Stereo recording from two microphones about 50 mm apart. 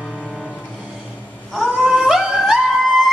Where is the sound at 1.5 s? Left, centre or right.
Centre.